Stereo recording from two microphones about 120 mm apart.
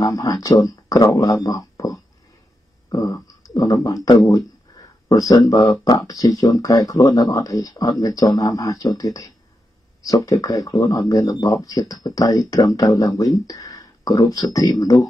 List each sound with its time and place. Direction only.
0.0 s speech: 30° left (ahead or behind)
3.1 s speech: 35° left (ahead or behind)